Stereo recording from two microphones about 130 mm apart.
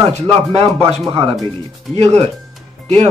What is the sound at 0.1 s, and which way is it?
A man's voice, 50° right (ahead or behind).